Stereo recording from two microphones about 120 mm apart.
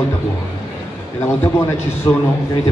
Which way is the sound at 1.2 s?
20° left (ahead or behind).